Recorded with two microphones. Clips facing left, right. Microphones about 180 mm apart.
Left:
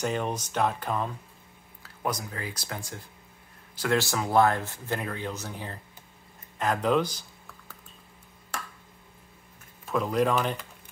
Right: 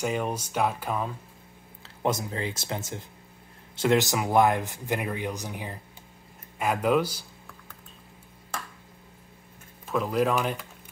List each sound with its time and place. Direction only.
0.0 s speech: 10° right (ahead or behind)
1.8 s speech: 25° right (ahead or behind); by 7.2 s 10° right (ahead or behind)
9.8 s speech: centre (ahead or behind)